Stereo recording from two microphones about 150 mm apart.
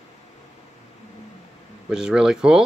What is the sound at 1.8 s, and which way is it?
Speech, 5° right (ahead or behind).